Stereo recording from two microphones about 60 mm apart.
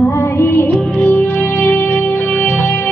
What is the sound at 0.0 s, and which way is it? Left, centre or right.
Music, left.